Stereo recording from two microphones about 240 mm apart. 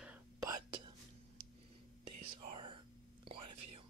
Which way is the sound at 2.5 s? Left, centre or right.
Right.